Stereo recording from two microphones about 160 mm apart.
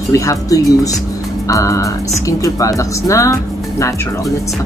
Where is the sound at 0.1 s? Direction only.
20° left (ahead or behind).